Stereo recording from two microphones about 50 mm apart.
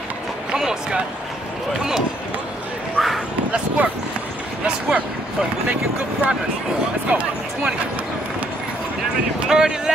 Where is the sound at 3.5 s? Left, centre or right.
Right.